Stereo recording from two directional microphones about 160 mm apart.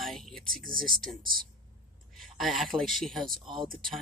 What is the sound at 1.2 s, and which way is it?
Speech, 65° right (ahead or behind).